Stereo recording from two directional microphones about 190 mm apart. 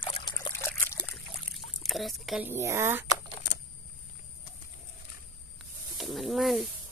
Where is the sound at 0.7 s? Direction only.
15° left (ahead or behind).